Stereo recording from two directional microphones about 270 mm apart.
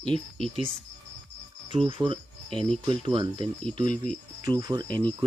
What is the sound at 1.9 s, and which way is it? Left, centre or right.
Speech, centre.